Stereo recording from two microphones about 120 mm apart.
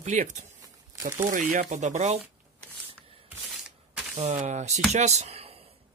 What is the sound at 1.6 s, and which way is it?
Speech, 85° right.